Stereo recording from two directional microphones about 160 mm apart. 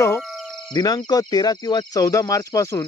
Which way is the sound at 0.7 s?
25° left (ahead or behind).